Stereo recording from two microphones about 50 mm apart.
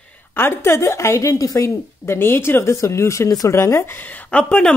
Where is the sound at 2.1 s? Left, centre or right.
Left.